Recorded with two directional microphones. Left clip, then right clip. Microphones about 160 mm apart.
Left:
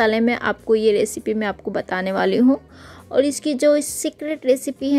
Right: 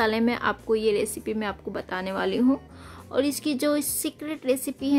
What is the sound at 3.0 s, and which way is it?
Speech, 20° left (ahead or behind).